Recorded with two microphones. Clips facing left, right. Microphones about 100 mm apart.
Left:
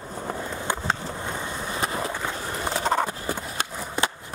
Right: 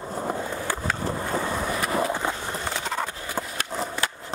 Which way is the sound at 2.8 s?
30° left (ahead or behind).